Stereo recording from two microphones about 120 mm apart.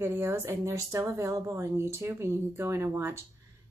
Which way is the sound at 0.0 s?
20° right (ahead or behind).